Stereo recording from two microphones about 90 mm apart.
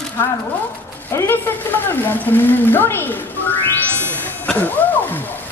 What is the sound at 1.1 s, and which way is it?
A woman's voice, 25° left (ahead or behind).